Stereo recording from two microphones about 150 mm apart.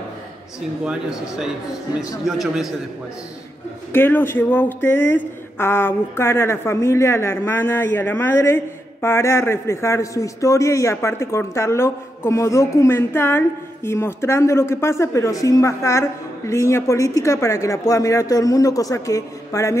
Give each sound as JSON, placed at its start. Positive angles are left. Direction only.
{"t": 0.8, "sound": "speech", "side_deg": -5}
{"t": 3.9, "sound": "a man's voice", "side_deg": 15}